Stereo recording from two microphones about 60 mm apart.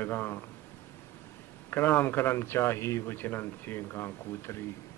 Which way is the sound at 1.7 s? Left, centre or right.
Left.